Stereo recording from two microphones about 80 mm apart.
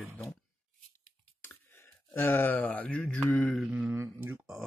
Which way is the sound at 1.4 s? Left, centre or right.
Left.